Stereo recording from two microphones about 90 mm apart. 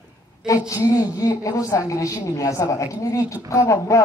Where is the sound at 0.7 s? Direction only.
40° left (ahead or behind).